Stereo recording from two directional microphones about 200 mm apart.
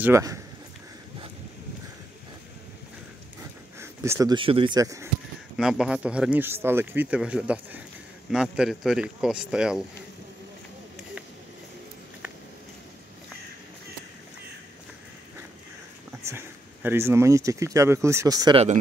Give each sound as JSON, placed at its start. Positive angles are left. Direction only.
{"t": 0.0, "sound": "speech", "side_deg": -15}
{"t": 3.8, "sound": "speech", "side_deg": -15}
{"t": 5.6, "sound": "speech", "side_deg": -5}
{"t": 16.1, "sound": "speech", "side_deg": -10}